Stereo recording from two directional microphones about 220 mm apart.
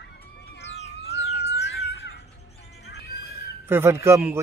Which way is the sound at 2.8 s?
45° left (ahead or behind).